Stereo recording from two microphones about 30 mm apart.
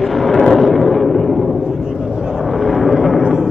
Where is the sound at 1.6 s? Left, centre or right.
Right.